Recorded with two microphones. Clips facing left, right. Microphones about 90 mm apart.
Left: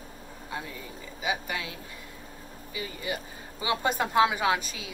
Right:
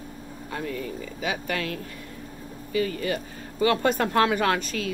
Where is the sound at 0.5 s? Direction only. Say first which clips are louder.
Right 7 dB; 15° left (ahead or behind).